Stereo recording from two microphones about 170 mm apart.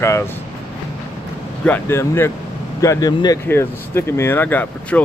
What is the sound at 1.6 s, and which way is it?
Speech, 10° left (ahead or behind).